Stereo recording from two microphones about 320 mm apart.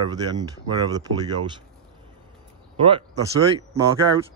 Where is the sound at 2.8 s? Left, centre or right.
Centre.